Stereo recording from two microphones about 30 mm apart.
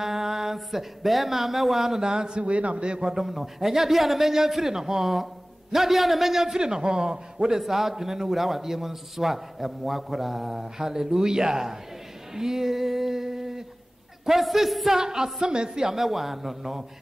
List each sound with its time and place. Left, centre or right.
0.0 s speech: centre
1.9 s a man's voice: right
2.4 s a man's voice: right
3.0 s a man's voice: centre
7.5 s a man's voice: centre
12.4 s a sound: centre
14.2 s a man's voice: centre
14.9 s a man's voice: centre
15.4 s a man's voice: right; by 16.8 s centre